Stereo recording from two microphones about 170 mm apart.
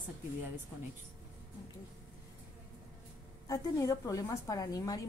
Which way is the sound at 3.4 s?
20° left (ahead or behind).